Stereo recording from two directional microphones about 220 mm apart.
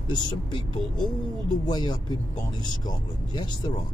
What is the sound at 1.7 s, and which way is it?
Speech, 20° left (ahead or behind).